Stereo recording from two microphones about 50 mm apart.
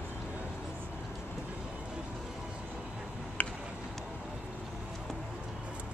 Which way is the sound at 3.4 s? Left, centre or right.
Left.